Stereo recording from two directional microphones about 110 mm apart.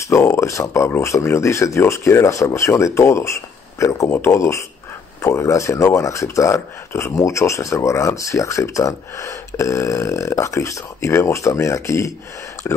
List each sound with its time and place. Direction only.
0.1 s speech: 25° left (ahead or behind)